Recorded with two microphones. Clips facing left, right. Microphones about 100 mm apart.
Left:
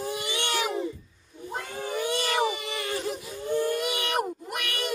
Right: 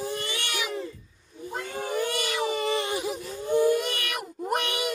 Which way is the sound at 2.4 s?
40° right (ahead or behind).